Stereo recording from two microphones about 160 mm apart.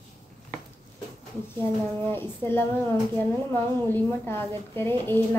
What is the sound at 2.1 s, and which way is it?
Speech, 15° left (ahead or behind).